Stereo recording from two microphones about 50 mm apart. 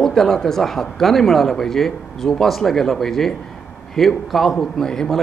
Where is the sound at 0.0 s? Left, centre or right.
Centre.